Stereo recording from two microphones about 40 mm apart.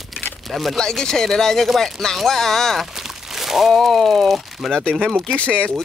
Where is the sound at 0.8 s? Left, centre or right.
Centre.